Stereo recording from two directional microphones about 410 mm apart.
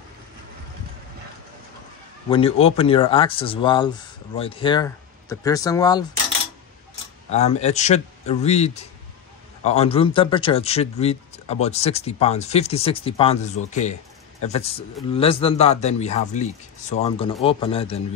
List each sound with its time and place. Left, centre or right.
2.2 s speech: centre
7.2 s speech: centre